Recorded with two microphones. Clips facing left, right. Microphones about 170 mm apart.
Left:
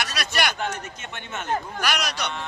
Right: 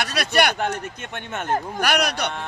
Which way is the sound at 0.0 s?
60° right (ahead or behind).